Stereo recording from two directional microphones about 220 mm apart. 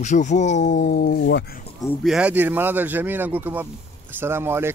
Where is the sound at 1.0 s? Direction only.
45° left (ahead or behind).